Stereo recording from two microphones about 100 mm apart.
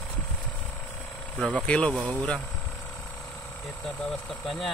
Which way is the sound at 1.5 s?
10° left (ahead or behind).